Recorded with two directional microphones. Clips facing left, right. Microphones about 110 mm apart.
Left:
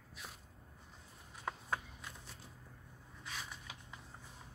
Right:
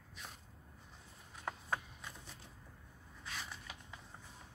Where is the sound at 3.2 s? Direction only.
5° left (ahead or behind).